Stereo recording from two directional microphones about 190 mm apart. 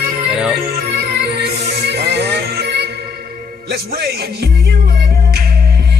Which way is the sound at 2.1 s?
60° right (ahead or behind).